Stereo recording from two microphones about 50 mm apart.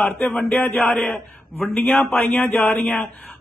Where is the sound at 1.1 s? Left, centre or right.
Left.